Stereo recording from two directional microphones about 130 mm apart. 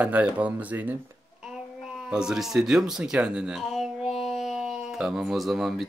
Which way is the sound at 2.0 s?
5° right (ahead or behind).